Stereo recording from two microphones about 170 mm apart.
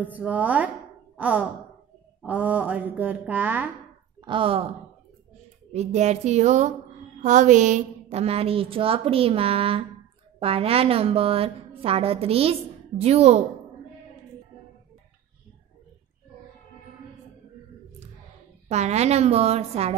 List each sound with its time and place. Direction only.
0.0 s a woman's voice: 10° right (ahead or behind)
4.2 s speech: 30° right (ahead or behind)
5.7 s a woman's voice: 40° right (ahead or behind)
18.7 s a woman's voice: 40° right (ahead or behind)